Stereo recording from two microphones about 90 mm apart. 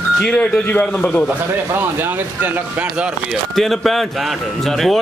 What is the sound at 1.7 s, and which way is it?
Speech, 25° right (ahead or behind).